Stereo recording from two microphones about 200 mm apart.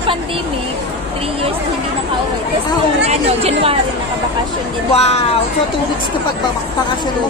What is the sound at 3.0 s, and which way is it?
Speech, 30° right (ahead or behind).